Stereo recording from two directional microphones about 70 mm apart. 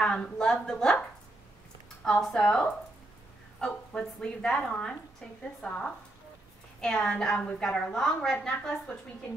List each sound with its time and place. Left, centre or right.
0.0 s a woman's voice: centre
2.0 s a woman's voice: centre